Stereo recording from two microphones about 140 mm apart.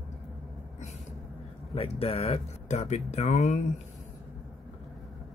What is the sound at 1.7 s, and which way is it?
Speech, 45° left (ahead or behind).